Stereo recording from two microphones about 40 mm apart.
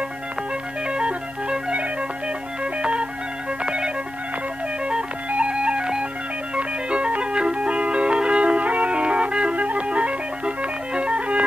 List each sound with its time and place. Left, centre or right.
0.8 s music: right
5.3 s music: right